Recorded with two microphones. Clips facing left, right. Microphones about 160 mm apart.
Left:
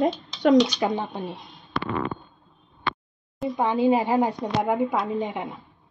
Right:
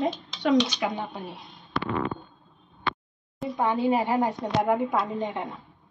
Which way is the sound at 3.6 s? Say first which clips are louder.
Left 3 dB; 15° left (ahead or behind).